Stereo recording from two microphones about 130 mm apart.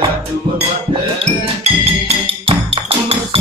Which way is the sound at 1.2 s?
50° right (ahead or behind).